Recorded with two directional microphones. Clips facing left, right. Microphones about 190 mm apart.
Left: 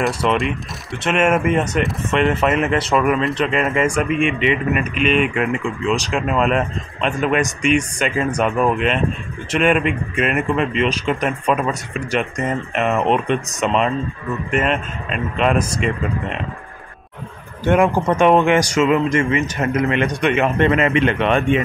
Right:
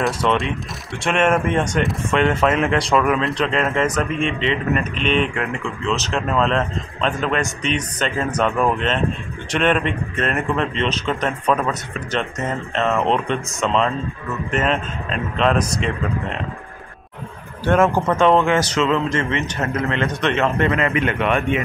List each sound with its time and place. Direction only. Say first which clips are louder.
0.0 s speech: left 1 dB; centre (ahead or behind)
17.6 s speech: left 1 dB; 15° left (ahead or behind)